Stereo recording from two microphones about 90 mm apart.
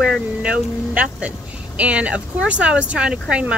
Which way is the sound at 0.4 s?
10° right (ahead or behind).